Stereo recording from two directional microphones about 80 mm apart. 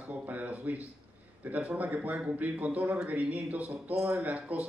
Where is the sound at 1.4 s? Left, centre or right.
Right.